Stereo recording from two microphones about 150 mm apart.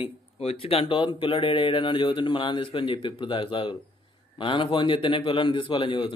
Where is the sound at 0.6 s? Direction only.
40° left (ahead or behind).